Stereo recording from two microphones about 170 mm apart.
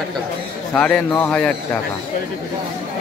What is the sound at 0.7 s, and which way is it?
Speech, 5° left (ahead or behind).